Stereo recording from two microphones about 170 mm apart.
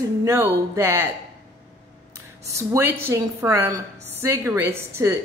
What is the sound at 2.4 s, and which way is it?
Speech, 15° right (ahead or behind).